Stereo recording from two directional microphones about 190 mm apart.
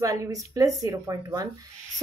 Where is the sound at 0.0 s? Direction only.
15° right (ahead or behind).